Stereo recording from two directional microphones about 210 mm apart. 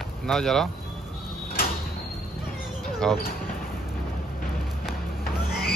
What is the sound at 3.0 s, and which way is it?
Speech, 5° left (ahead or behind).